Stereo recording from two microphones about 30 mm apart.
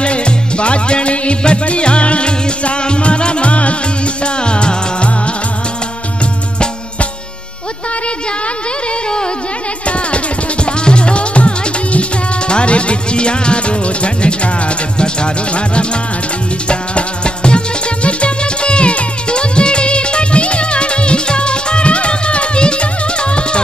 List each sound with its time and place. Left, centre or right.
0.0 s music: left
4.2 s music: left
9.8 s music: left